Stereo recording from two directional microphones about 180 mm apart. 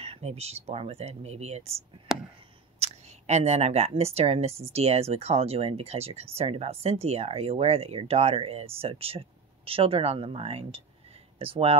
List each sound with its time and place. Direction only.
0.0 s speech: 35° right (ahead or behind)
2.1 s a sound: 5° right (ahead or behind)
2.8 s speech: 35° right (ahead or behind)